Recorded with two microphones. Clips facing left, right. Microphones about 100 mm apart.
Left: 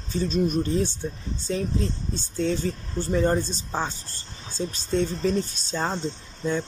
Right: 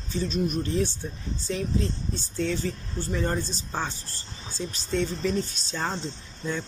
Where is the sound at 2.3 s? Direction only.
35° left (ahead or behind).